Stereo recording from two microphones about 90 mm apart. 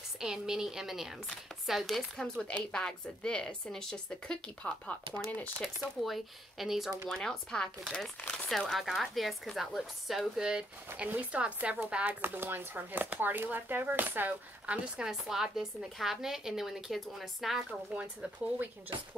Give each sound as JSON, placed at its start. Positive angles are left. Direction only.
{"t": 0.2, "sound": "a woman's voice", "side_deg": -5}
{"t": 5.8, "sound": "a woman's voice", "side_deg": 0}
{"t": 7.2, "sound": "a woman's voice", "side_deg": 10}
{"t": 7.8, "sound": "a woman's voice", "side_deg": -5}
{"t": 15.0, "sound": "a woman's voice", "side_deg": -5}
{"t": 17.9, "sound": "speech", "side_deg": -15}